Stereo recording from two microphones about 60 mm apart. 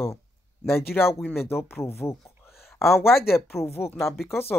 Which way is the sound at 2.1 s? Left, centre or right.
Left.